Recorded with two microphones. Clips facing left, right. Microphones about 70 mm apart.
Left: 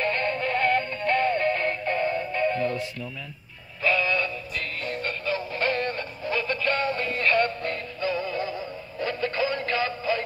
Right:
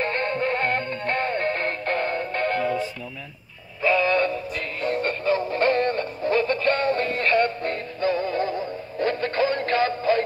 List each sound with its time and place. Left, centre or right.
0.0 s music: right
3.8 s synthetic singing: right